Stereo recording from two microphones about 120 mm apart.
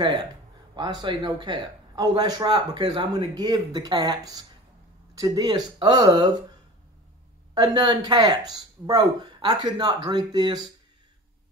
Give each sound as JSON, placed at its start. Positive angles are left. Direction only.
{"t": 0.0, "sound": "a man's voice", "side_deg": -40}
{"t": 7.5, "sound": "a man's voice", "side_deg": -35}